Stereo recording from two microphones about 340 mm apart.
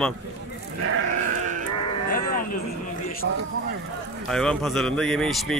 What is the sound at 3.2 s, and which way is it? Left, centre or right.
Speech, right.